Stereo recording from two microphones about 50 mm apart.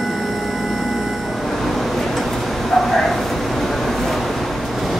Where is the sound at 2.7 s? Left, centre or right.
Centre.